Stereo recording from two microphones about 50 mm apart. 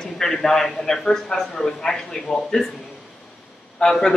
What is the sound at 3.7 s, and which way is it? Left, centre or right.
Speech, centre.